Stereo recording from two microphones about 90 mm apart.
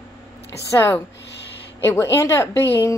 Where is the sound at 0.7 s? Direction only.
25° left (ahead or behind).